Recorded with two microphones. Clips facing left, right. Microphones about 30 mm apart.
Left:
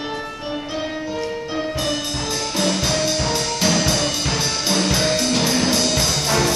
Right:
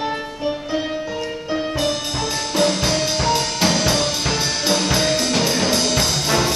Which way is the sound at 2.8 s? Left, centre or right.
Centre.